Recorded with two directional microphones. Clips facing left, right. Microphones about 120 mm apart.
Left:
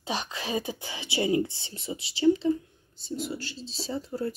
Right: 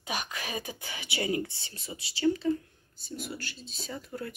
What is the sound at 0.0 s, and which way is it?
Speech, 25° left (ahead or behind).